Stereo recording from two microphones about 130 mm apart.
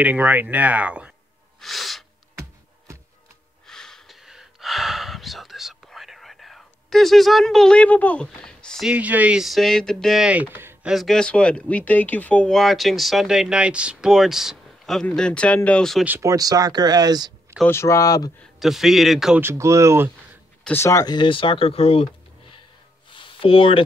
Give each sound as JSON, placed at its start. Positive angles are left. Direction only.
{"t": 0.0, "sound": "speech", "side_deg": -10}
{"t": 1.6, "sound": "sneeze", "side_deg": 0}
{"t": 3.6, "sound": "gasp", "side_deg": 5}
{"t": 8.8, "sound": "speech", "side_deg": -10}
{"t": 10.2, "sound": "speech", "side_deg": -10}
{"t": 10.9, "sound": "speech", "side_deg": 0}
{"t": 16.2, "sound": "speech", "side_deg": -25}
{"t": 17.6, "sound": "speech", "side_deg": 20}
{"t": 18.4, "sound": "speech", "side_deg": 0}
{"t": 19.4, "sound": "speech", "side_deg": -20}
{"t": 20.6, "sound": "speech", "side_deg": 20}
{"t": 23.0, "sound": "a sound", "side_deg": 40}